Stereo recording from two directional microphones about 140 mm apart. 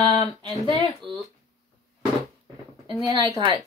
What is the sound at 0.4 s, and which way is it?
Speech, 35° right (ahead or behind).